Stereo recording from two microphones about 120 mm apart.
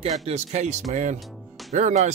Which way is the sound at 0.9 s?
90° right.